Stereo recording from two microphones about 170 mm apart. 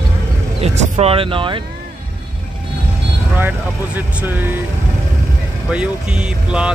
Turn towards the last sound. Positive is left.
turn(degrees=-5)  # may be behind; listen again after turning